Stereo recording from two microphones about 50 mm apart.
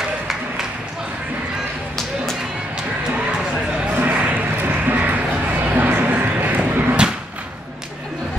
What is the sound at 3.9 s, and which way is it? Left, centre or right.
Basketball bounce, right.